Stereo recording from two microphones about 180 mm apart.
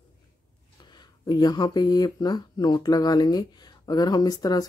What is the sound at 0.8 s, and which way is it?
Speech, 25° left (ahead or behind).